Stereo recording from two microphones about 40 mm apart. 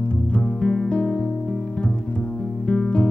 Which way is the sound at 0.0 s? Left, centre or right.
Left.